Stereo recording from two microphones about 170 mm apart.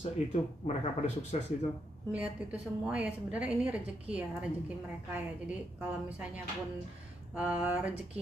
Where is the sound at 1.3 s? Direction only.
40° left (ahead or behind).